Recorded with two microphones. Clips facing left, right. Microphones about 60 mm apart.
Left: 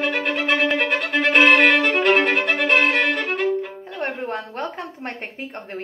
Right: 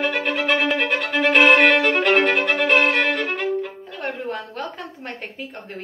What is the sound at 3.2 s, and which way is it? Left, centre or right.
Violin, centre.